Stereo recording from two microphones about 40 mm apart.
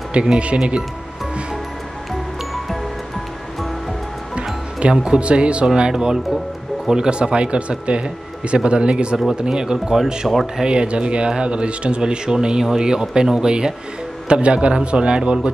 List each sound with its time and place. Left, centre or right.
0.2 s speech: right
4.4 s music: right
4.9 s speech: right
5.8 s speech: centre